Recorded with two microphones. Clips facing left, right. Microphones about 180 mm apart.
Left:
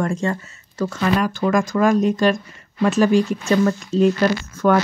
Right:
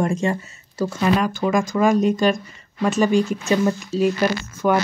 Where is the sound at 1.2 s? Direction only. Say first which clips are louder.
Left 1 dB; centre (ahead or behind).